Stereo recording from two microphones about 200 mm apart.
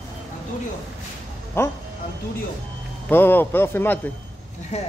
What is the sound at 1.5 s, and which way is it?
Speech, 15° left (ahead or behind).